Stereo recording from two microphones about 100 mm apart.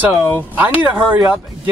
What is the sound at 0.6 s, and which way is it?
Speech, 15° right (ahead or behind).